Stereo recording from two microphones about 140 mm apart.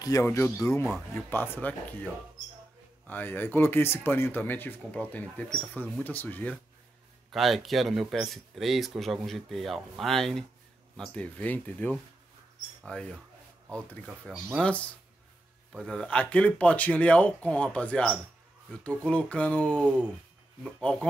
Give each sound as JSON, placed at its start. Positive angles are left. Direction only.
{"t": 0.0, "sound": "speech", "side_deg": 20}
{"t": 3.1, "sound": "speech", "side_deg": 15}
{"t": 7.2, "sound": "speech", "side_deg": 0}